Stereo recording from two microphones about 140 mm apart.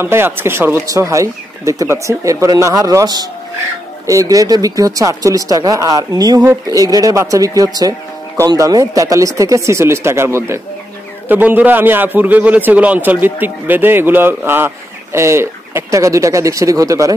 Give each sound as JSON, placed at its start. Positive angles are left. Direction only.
{"t": 0.0, "sound": "a man's voice", "side_deg": -15}